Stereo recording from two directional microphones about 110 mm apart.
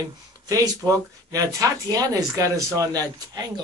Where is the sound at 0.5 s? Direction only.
30° right (ahead or behind).